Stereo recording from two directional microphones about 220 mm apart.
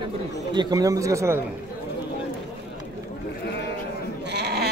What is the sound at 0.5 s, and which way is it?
Speech, 20° right (ahead or behind).